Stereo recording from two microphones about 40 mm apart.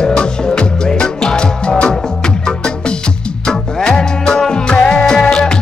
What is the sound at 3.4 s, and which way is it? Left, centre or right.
Music, left.